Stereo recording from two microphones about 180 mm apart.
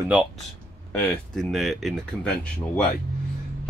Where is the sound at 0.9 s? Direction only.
5° left (ahead or behind).